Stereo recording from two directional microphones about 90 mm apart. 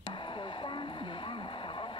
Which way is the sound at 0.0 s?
60° left (ahead or behind).